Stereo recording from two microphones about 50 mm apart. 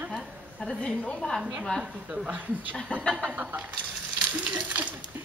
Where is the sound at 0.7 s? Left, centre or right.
Centre.